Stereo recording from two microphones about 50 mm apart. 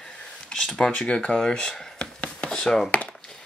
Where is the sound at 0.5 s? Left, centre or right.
Centre.